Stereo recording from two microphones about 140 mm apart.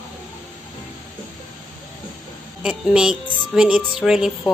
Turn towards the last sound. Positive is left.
turn(degrees=-5)  # may be behind; listen again after turning